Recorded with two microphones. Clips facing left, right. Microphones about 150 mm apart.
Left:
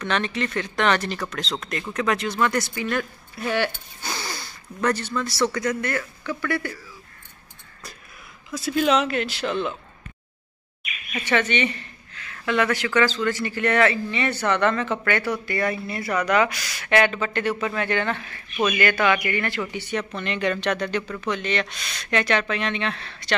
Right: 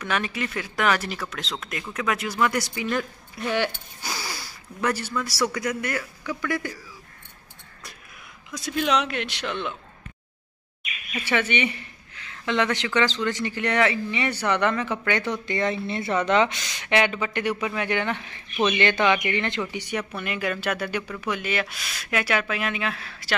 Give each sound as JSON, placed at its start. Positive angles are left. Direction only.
{"t": 0.0, "sound": "speech", "side_deg": -10}
{"t": 8.5, "sound": "speech", "side_deg": 5}
{"t": 11.2, "sound": "speech", "side_deg": -10}